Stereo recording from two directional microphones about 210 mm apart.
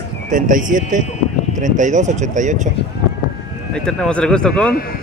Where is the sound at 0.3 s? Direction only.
40° right (ahead or behind).